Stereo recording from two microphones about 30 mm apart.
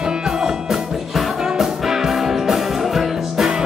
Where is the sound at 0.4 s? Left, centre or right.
Centre.